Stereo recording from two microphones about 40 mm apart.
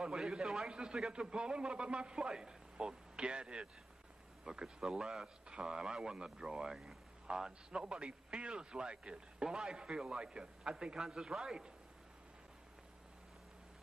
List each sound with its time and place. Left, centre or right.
0.1 s a man's voice: centre